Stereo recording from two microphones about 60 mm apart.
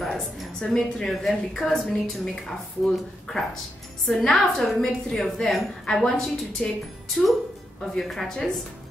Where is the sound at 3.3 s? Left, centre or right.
Centre.